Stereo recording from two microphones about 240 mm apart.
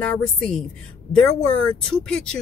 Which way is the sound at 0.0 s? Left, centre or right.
Centre.